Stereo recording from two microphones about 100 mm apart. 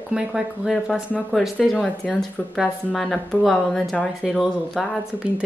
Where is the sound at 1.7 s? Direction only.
10° left (ahead or behind).